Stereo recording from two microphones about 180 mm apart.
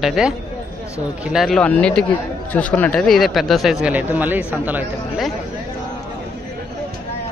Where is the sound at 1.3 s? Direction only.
Centre (ahead or behind).